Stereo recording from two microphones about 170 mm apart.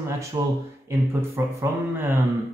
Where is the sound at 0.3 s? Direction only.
20° right (ahead or behind).